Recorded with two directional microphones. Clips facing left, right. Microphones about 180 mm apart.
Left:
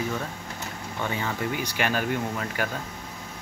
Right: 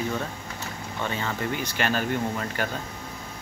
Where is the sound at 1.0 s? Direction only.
10° left (ahead or behind).